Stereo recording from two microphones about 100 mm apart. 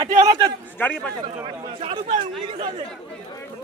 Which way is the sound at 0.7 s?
20° left (ahead or behind).